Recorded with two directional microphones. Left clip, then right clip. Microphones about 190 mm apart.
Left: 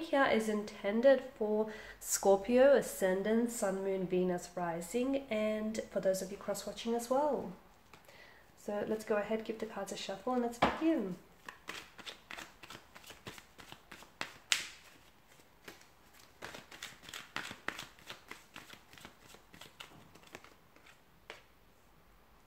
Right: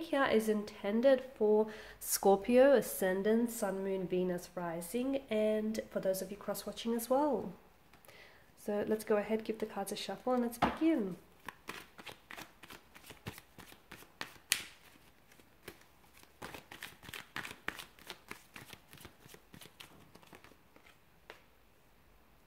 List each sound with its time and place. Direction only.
0.0 s speech: 35° right (ahead or behind)
17.0 s shuffling cards: 25° right (ahead or behind)